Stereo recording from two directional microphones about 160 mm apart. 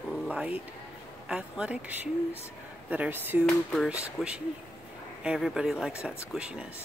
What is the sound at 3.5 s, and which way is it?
Speech, centre (ahead or behind).